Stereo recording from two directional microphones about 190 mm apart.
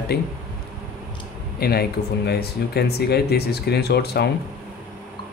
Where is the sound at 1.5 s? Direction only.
55° left (ahead or behind).